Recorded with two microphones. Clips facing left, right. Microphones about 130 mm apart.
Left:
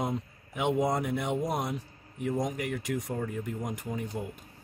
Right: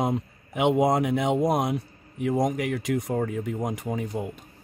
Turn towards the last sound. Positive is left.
turn(degrees=-90)